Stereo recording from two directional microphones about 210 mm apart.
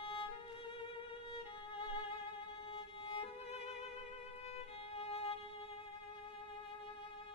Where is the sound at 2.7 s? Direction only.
25° left (ahead or behind).